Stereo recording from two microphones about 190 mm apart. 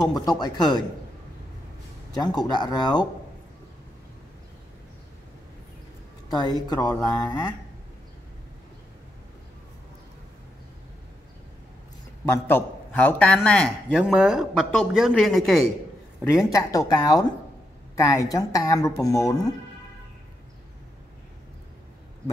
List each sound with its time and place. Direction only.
0.0 s speech: 20° left (ahead or behind)
2.1 s speech: 20° left (ahead or behind)
6.3 s speech: 20° left (ahead or behind)
12.3 s a man's voice: 10° left (ahead or behind)
16.4 s a woman's voice: 20° left (ahead or behind)